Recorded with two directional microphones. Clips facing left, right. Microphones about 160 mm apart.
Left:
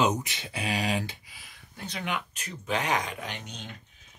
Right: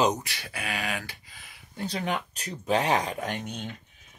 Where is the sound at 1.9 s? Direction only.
35° right (ahead or behind).